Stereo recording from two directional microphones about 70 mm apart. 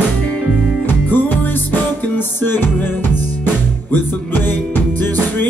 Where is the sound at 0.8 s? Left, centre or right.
Left.